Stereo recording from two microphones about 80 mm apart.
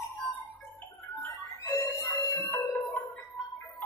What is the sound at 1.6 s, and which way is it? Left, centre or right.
Music, left.